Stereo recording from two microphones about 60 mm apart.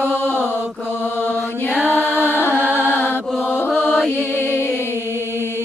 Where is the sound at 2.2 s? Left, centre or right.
Right.